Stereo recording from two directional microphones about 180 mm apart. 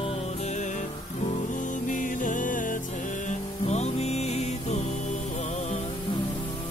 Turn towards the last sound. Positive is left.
turn(degrees=35)  # may be behind; listen again after turning